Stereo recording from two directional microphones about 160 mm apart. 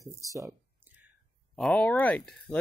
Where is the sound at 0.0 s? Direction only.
20° right (ahead or behind).